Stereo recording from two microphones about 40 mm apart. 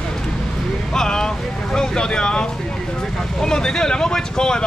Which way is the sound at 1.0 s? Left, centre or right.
Centre.